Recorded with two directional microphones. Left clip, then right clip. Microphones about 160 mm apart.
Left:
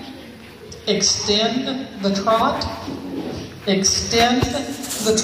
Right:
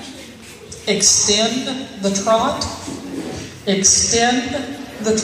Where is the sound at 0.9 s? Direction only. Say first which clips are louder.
Right 3 dB; 35° right (ahead or behind).